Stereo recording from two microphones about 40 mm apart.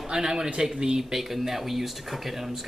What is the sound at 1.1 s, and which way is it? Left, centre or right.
Speech, centre.